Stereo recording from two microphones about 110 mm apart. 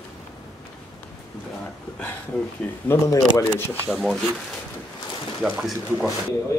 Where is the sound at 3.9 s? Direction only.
Centre (ahead or behind).